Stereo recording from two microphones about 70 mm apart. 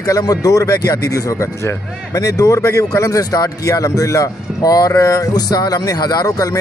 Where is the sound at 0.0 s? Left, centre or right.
Left.